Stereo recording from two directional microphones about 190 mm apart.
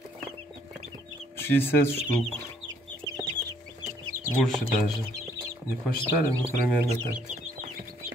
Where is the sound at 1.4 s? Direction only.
10° left (ahead or behind).